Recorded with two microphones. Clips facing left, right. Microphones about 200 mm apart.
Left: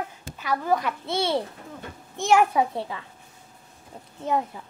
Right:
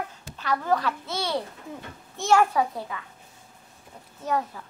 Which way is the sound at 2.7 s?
25° left (ahead or behind).